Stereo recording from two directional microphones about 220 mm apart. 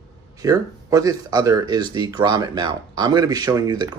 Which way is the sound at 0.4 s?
15° right (ahead or behind).